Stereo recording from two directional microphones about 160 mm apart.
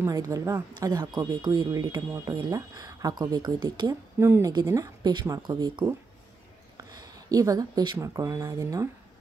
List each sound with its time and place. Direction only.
0.0 s speech: 20° right (ahead or behind)